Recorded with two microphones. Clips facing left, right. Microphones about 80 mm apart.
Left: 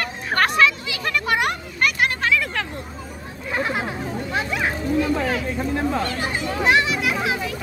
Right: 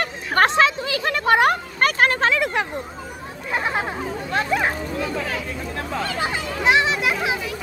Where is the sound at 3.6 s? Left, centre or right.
Right.